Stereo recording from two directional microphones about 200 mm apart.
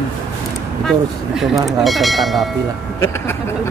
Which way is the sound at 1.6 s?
Centre (ahead or behind).